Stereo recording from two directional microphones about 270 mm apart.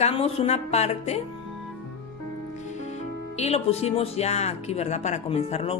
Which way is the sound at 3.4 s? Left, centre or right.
Left.